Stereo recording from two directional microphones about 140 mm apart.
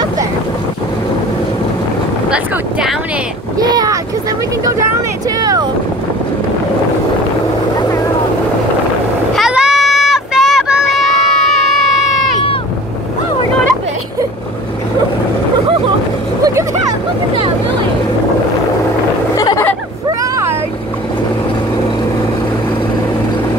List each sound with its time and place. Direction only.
2.3 s speech: 5° right (ahead or behind)
3.5 s speech: 30° right (ahead or behind)
5.4 s speech: 30° right (ahead or behind)
9.3 s child singing: 5° right (ahead or behind)
19.3 s a sound: 25° left (ahead or behind)
20.2 s vehicle: 20° right (ahead or behind)